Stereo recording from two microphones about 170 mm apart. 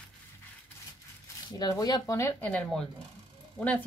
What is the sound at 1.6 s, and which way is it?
Speech, 20° left (ahead or behind).